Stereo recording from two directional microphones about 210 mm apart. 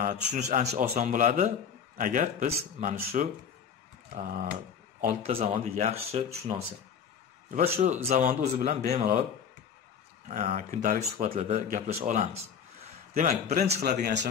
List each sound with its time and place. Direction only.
0.0 s speech: 35° right (ahead or behind)
5.0 s speech: 30° right (ahead or behind)
7.5 s speech: 30° right (ahead or behind)
10.2 s speech: 35° right (ahead or behind)